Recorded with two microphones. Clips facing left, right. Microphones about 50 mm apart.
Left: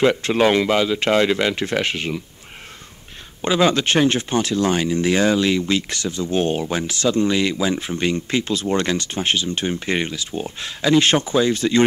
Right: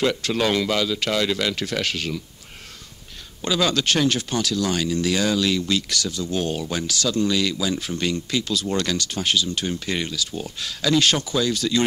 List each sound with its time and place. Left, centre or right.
0.0 s speech: left
3.4 s speech: left